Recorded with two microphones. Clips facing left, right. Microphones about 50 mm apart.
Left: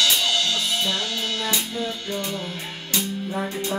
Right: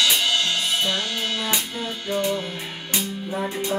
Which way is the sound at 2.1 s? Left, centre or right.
Centre.